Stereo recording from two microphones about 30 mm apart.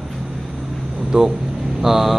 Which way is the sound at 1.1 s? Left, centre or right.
Right.